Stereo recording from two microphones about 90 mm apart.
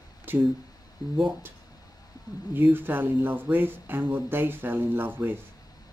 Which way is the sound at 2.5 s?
20° right (ahead or behind).